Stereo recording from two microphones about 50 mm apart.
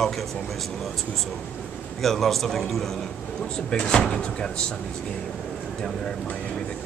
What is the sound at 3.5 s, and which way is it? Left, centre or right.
Speech, centre.